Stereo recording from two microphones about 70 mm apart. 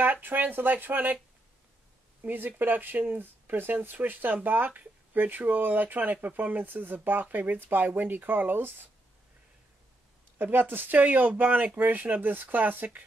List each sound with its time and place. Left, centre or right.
0.0 s speech: right
2.2 s speech: right
10.4 s speech: right